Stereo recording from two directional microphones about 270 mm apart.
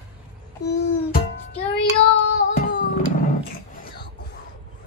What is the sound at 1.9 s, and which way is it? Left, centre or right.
Child singing, left.